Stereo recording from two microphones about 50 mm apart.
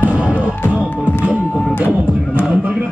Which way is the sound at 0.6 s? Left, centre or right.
Left.